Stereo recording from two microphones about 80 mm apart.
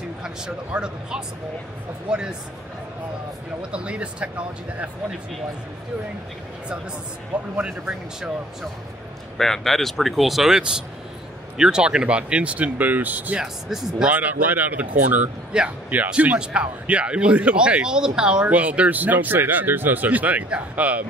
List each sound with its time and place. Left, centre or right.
0.2 s speech: centre
3.7 s speech: centre
7.6 s speech: centre
9.4 s speech: centre; by 13.4 s right
13.4 s speech: centre
14.1 s speech: right